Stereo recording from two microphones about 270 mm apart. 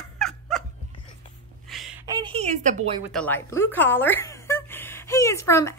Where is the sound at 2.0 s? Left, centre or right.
Centre.